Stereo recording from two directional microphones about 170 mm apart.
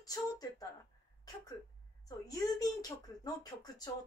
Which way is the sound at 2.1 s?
20° left (ahead or behind).